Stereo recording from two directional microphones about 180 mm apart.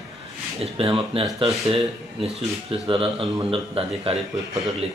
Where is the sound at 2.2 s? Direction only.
30° right (ahead or behind).